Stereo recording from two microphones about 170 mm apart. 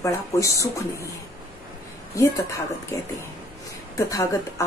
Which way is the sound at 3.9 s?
20° left (ahead or behind).